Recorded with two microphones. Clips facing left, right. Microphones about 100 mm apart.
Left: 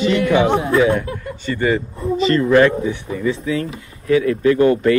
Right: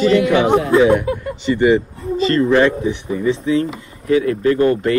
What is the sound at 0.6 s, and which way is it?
Speech, 25° right (ahead or behind).